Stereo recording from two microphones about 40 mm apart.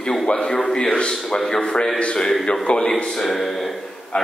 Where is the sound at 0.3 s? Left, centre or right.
Left.